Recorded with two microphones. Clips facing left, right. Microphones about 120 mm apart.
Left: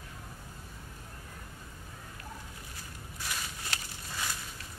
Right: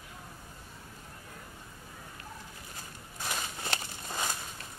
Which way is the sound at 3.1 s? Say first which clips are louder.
Right 3 dB; 25° right (ahead or behind).